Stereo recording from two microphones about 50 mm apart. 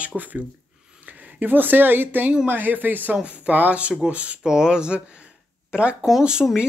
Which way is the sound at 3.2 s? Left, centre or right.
Right.